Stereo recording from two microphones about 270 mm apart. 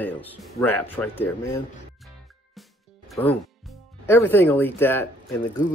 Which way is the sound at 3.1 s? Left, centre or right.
Centre.